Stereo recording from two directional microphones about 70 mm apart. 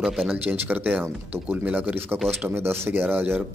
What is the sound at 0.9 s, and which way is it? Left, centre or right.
Speech, centre.